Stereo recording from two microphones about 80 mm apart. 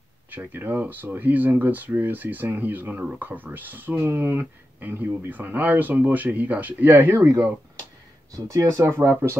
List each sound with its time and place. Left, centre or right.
0.3 s speech: right
8.8 s speech: right